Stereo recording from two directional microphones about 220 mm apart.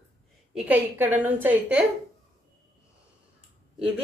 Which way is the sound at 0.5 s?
5° right (ahead or behind).